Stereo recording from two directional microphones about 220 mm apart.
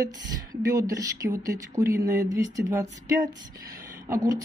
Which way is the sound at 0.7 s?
15° right (ahead or behind).